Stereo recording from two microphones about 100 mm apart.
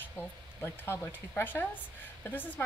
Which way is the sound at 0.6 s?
20° left (ahead or behind).